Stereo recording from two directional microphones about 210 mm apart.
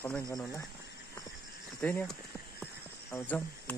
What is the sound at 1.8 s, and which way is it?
Speech, 5° left (ahead or behind).